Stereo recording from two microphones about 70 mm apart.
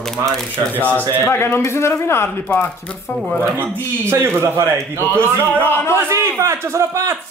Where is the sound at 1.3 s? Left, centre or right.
Left.